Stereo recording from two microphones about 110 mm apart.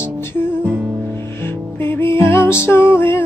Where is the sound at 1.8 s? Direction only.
20° left (ahead or behind).